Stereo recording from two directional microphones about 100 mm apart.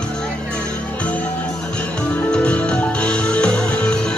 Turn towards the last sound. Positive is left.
turn(degrees=10)  # may be behind; listen again after turning